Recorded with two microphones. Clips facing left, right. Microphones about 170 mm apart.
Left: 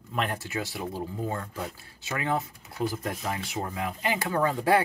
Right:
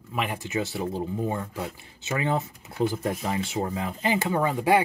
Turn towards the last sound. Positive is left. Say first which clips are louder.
# right 2 dB
turn(degrees=-15)  # may be behind; listen again after turning